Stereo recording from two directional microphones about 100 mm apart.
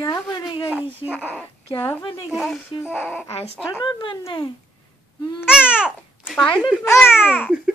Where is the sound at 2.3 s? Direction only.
Centre (ahead or behind).